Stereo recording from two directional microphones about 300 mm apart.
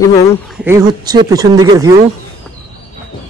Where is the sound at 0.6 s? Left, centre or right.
Centre.